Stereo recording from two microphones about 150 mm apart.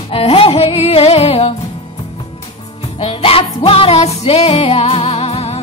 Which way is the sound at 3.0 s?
40° left (ahead or behind).